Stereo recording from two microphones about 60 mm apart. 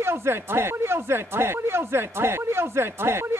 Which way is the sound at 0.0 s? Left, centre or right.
Right.